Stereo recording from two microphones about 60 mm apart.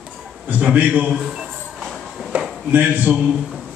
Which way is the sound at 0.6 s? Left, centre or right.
Right.